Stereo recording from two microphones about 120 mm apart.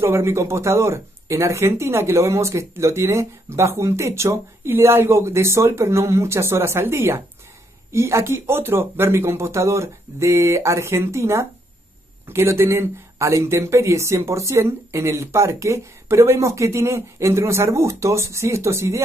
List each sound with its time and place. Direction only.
0.0 s speech: 20° right (ahead or behind)